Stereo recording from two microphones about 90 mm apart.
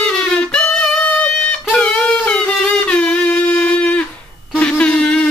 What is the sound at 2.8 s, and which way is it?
Wind instrument, 10° left (ahead or behind).